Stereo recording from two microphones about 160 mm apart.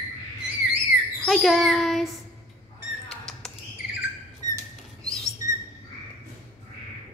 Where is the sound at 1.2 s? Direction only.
Centre (ahead or behind).